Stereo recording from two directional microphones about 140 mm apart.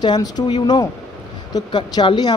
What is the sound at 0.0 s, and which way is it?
Speech, 30° left (ahead or behind).